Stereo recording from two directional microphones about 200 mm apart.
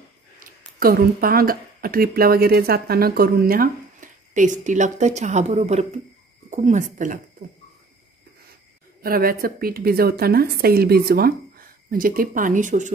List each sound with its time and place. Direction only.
0.4 s speech: 45° right (ahead or behind)
9.0 s a woman's voice: 45° right (ahead or behind)